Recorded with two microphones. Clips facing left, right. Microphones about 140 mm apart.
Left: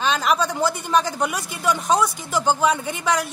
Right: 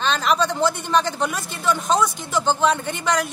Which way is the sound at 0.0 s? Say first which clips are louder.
Even; 5° left (ahead or behind).